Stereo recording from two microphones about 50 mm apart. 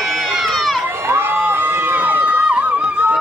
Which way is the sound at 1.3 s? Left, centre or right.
Right.